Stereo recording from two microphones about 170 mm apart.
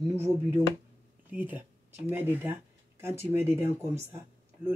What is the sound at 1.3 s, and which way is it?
Speech, 10° right (ahead or behind).